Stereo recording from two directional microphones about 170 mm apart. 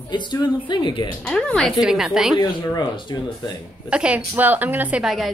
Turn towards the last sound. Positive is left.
turn(degrees=0)  # may be behind; listen again after turning